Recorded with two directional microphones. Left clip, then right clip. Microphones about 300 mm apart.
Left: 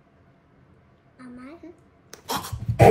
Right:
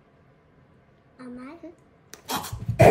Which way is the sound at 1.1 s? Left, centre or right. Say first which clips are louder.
Right 2 dB; centre.